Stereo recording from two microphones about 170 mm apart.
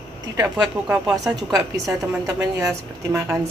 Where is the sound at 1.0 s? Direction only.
Centre (ahead or behind).